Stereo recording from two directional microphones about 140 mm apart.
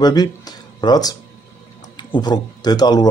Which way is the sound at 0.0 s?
30° left (ahead or behind).